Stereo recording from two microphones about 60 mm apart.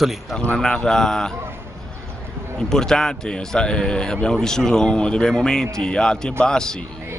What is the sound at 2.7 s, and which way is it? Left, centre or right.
A man's voice, centre.